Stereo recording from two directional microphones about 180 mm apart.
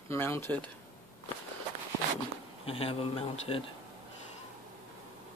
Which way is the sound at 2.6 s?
30° left (ahead or behind).